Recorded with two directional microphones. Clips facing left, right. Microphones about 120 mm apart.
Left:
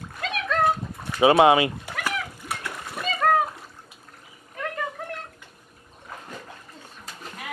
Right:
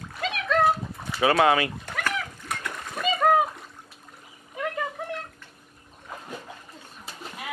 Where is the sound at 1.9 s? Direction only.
5° left (ahead or behind).